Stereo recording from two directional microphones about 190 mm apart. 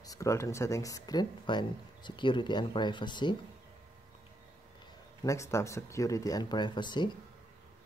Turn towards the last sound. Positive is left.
turn(degrees=25)  # may be behind; listen again after turning